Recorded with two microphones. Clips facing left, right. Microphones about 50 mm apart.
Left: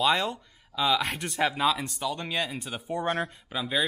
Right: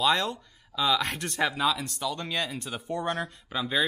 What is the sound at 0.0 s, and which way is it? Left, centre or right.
Speech, centre.